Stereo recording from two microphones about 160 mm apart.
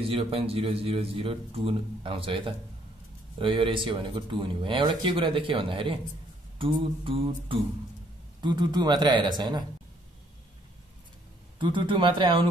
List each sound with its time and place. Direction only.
0.1 s a man's voice: 35° right (ahead or behind)
11.5 s speech: 30° right (ahead or behind)